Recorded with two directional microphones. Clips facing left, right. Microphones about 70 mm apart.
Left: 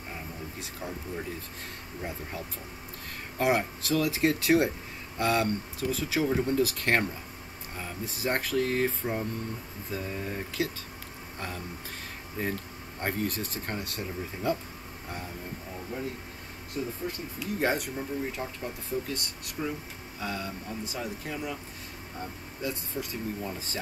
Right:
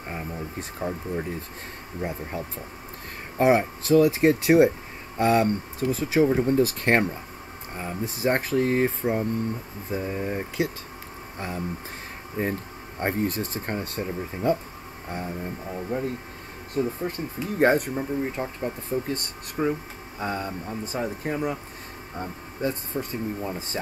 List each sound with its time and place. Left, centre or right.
0.1 s speech: right
16.7 s speech: right